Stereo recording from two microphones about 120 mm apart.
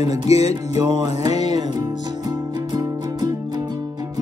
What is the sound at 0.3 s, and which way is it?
Music, 65° left (ahead or behind).